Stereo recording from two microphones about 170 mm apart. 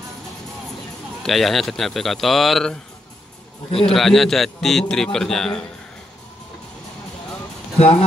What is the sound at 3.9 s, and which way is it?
A man's voice, centre (ahead or behind).